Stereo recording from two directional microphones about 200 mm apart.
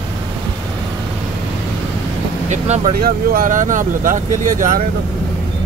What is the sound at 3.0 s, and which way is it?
Speech, 45° right (ahead or behind).